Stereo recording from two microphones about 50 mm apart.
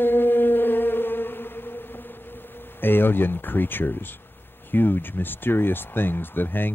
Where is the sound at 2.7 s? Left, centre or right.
Left.